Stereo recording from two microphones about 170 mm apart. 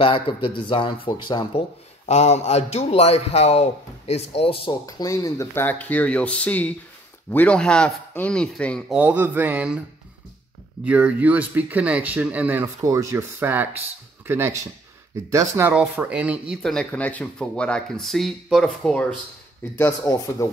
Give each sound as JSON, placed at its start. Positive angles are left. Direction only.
{"t": 0.0, "sound": "speech", "side_deg": 30}
{"t": 2.0, "sound": "a man's voice", "side_deg": 40}
{"t": 4.8, "sound": "speech", "side_deg": 20}
{"t": 8.9, "sound": "speech", "side_deg": -10}
{"t": 16.6, "sound": "speech", "side_deg": 5}
{"t": 19.8, "sound": "speech", "side_deg": 20}